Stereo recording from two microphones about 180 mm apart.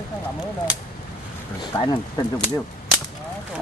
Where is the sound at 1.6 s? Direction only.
25° left (ahead or behind).